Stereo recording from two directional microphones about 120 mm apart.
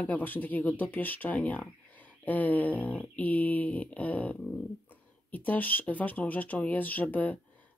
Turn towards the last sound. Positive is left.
turn(degrees=15)  # may be behind; listen again after turning